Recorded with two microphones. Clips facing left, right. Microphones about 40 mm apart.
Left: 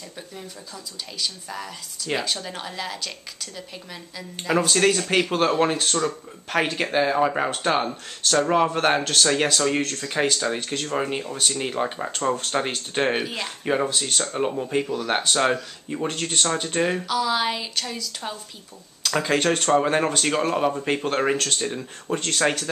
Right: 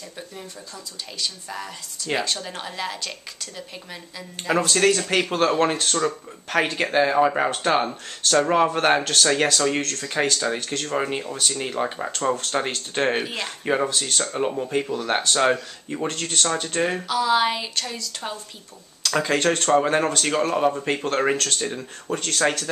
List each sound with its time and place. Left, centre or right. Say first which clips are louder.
1.2 s speech: even; centre
4.5 s speech: right 1 dB; centre
13.8 s speech: even; centre
14.3 s speech: even; centre
16.1 s speech: even; centre
16.8 s speech: right 1 dB; centre
21.6 s speech: even; centre
22.1 s speech: even; centre